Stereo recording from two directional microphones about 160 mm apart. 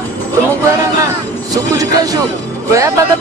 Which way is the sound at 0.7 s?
20° right (ahead or behind).